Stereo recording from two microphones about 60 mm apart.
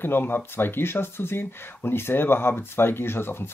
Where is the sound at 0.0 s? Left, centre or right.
Left.